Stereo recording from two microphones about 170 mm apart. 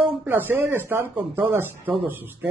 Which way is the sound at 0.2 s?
10° right (ahead or behind).